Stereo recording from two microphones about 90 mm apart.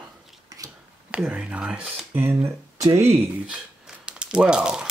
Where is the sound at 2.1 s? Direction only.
25° right (ahead or behind).